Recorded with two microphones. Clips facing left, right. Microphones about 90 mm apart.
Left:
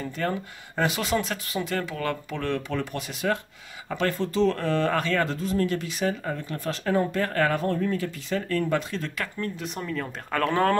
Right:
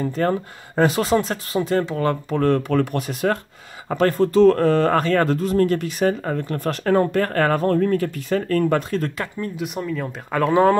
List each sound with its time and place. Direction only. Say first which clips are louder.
0.0 s speech: right 8 dB; 40° right (ahead or behind)
9.4 s speech: right 6 dB; 10° right (ahead or behind)